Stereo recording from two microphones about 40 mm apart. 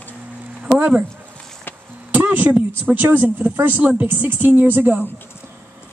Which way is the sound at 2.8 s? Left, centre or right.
Right.